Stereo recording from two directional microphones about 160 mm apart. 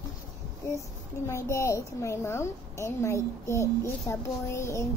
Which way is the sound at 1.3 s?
15° left (ahead or behind).